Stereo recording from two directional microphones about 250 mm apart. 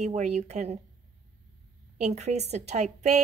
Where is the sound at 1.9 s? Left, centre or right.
Right.